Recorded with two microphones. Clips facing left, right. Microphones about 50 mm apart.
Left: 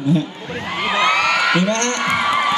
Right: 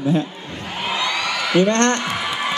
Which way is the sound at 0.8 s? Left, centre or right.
Left.